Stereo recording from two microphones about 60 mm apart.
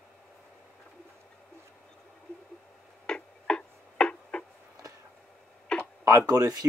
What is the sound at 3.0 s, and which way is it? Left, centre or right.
Tick-tock, centre.